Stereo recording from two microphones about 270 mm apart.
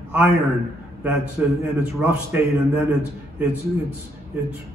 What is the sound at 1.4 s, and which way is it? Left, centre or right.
A man's voice, centre.